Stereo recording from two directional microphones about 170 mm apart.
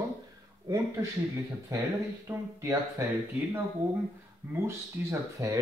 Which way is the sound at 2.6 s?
15° right (ahead or behind).